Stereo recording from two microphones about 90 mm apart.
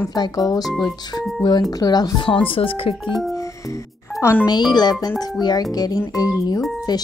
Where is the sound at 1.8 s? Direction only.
45° left (ahead or behind).